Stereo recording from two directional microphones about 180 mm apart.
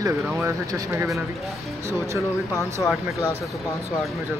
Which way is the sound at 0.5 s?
15° right (ahead or behind).